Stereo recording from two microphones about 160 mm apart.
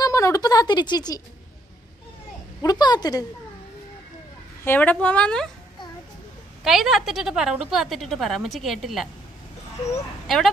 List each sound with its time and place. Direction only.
0.0 s speech: 20° left (ahead or behind)
2.6 s a woman's voice: 25° left (ahead or behind)
4.6 s a woman's voice: 10° left (ahead or behind)
6.6 s a woman's voice: centre (ahead or behind)
10.2 s speech: centre (ahead or behind)